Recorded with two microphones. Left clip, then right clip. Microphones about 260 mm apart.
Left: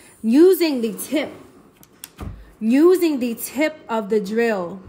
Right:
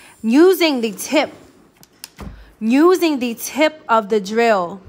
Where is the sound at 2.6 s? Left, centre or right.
Centre.